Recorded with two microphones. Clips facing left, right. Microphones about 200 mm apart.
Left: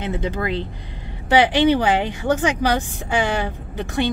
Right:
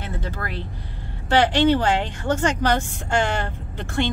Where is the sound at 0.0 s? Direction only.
20° left (ahead or behind).